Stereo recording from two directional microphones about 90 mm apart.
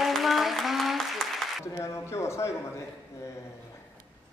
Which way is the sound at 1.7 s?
35° left (ahead or behind).